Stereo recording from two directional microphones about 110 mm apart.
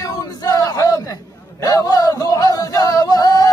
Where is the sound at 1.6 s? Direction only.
35° left (ahead or behind).